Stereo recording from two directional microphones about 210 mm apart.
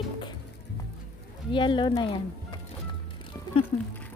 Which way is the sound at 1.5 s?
20° left (ahead or behind).